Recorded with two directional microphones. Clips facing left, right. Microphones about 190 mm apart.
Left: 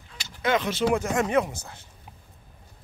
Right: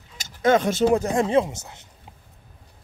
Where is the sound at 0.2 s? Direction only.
45° right (ahead or behind).